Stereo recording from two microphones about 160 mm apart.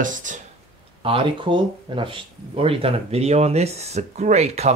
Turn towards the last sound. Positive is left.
turn(degrees=-45)  # may be behind; listen again after turning